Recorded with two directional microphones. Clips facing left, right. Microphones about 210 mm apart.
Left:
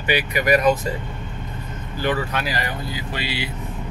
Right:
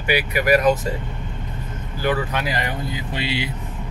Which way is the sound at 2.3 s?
20° right (ahead or behind).